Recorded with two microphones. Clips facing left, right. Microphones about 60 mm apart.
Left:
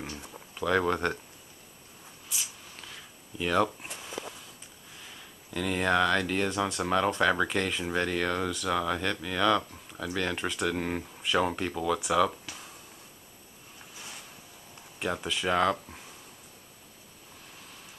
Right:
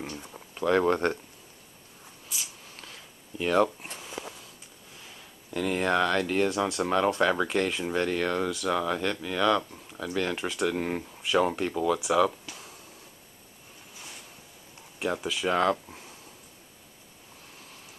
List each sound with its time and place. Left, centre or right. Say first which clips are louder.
0.6 s speech: right 3 dB; centre
3.3 s speech: right 3 dB; centre
4.2 s a sound: even; right
5.5 s speech: right 1 dB; centre
15.0 s speech: right 2 dB; centre